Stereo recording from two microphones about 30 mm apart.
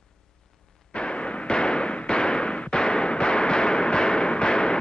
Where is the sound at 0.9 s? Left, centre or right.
Left.